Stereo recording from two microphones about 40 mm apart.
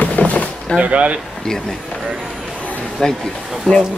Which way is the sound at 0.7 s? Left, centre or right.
Right.